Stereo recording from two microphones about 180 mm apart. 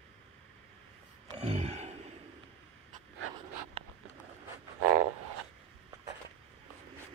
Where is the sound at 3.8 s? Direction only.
30° right (ahead or behind).